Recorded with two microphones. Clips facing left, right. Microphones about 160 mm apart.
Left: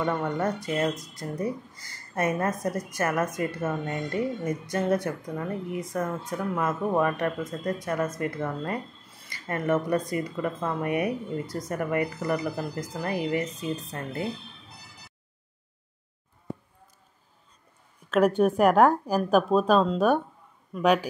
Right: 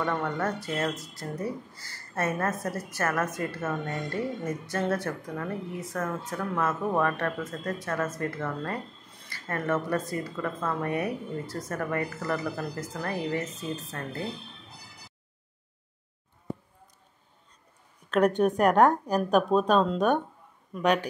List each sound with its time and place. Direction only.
0.0 s speech: 10° left (ahead or behind)
18.1 s a woman's voice: 5° left (ahead or behind)